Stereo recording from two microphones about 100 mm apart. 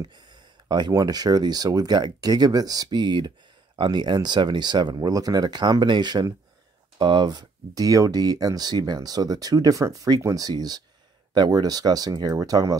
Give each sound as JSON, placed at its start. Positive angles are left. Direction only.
{"t": 0.7, "sound": "speech", "side_deg": -45}